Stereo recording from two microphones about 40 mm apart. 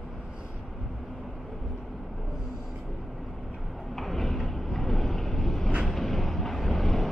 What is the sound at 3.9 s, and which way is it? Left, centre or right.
Vehicle, centre.